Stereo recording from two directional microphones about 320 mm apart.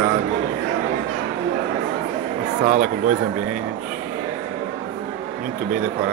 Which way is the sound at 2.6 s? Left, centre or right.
Right.